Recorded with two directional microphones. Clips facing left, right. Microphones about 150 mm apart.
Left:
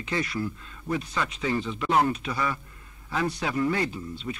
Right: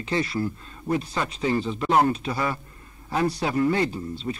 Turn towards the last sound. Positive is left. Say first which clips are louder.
# right 4 dB
turn(degrees=-35)  # may be behind; listen again after turning